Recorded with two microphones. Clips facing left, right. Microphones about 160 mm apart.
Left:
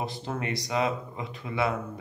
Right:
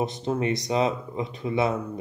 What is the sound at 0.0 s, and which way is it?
Speech, 20° right (ahead or behind).